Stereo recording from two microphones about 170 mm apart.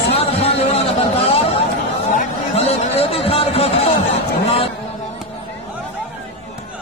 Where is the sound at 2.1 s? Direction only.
40° left (ahead or behind).